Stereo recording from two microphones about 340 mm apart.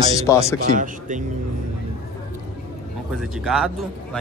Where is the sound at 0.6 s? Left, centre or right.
Right.